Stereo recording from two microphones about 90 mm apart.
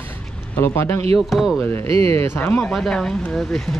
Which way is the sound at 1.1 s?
Centre (ahead or behind).